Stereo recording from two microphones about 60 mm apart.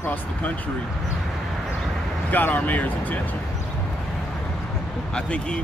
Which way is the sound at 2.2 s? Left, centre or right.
Left.